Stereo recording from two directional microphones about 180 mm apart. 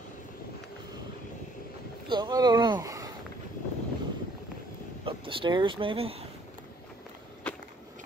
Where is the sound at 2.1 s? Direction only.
25° right (ahead or behind).